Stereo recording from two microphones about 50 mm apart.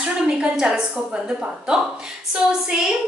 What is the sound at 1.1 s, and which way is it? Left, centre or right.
A woman's voice, centre.